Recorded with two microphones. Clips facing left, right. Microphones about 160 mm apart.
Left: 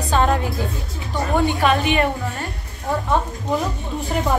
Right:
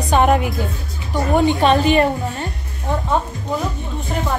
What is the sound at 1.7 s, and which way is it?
Speech, 35° right (ahead or behind).